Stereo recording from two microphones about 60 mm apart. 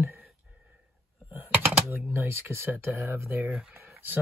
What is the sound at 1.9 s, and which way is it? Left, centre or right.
Speech, right.